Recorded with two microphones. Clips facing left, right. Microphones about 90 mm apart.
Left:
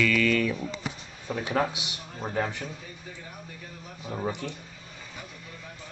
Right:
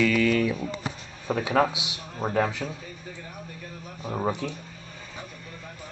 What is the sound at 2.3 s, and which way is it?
Speech, 45° right (ahead or behind).